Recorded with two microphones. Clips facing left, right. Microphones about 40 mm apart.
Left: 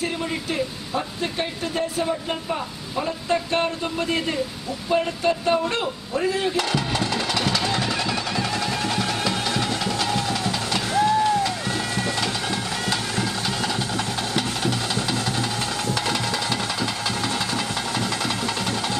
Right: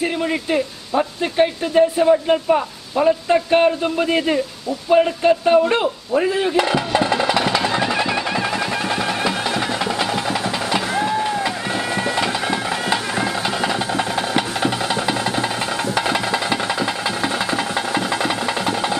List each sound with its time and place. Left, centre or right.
0.0 s speech: right
4.9 s a sound: right
12.0 s music: right